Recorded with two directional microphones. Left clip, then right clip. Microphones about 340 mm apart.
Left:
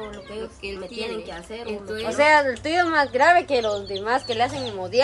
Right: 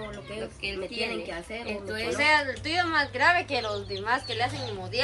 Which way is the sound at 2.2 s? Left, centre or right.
Left.